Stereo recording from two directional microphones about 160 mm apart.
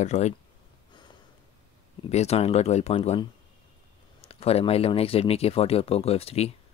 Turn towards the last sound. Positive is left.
turn(degrees=40)  # may be behind; listen again after turning